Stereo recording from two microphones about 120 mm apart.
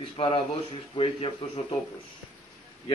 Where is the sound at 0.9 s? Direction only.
55° left (ahead or behind).